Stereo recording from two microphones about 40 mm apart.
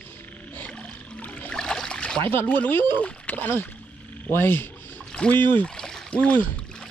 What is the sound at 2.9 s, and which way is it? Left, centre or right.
Speech, left.